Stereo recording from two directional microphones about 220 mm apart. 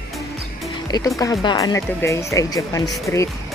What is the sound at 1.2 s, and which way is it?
Speech, 15° left (ahead or behind).